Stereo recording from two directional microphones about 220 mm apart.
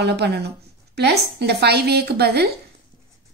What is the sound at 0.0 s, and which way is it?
A woman's voice, 50° right (ahead or behind).